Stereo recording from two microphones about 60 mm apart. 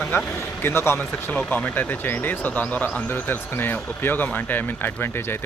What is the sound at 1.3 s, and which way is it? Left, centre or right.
Speech, left.